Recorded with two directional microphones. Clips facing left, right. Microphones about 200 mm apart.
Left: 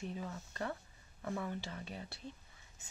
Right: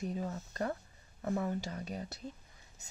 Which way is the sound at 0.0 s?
40° right (ahead or behind).